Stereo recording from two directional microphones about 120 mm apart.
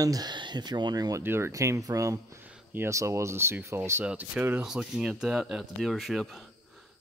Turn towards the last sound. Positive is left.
turn(degrees=0)  # may be behind; listen again after turning